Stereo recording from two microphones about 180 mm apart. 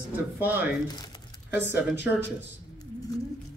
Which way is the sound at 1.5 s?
10° right (ahead or behind).